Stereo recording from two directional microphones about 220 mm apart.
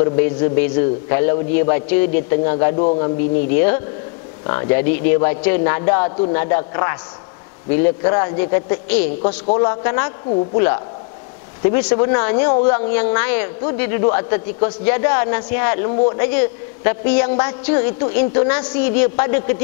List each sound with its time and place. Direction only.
0.0 s a man's voice: 20° left (ahead or behind)
2.7 s a man's voice: 30° left (ahead or behind)
3.5 s a man's voice: 15° left (ahead or behind)
11.6 s a man's voice: 15° left (ahead or behind)